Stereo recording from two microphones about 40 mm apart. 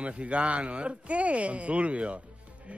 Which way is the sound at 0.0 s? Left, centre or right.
Right.